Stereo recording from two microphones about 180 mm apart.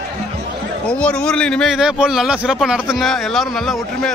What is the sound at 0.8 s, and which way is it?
A man's voice, 5° left (ahead or behind).